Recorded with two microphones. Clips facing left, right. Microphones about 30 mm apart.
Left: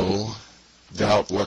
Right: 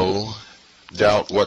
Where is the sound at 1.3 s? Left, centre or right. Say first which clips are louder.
Right 6 dB; right.